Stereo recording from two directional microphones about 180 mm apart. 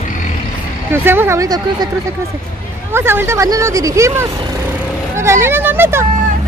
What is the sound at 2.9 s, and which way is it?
Speech, 15° right (ahead or behind).